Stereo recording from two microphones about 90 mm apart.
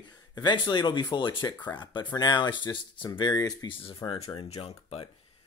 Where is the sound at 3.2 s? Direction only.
45° left (ahead or behind).